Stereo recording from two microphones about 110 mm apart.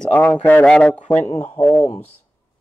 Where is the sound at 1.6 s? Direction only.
30° left (ahead or behind).